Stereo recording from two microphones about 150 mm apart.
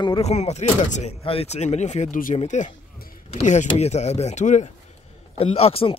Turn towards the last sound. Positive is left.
turn(degrees=40)  # may be behind; listen again after turning